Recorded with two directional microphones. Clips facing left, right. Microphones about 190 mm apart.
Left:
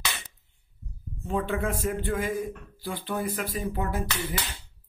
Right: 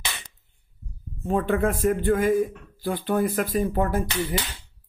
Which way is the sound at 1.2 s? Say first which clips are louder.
Right 6 dB; 50° right (ahead or behind).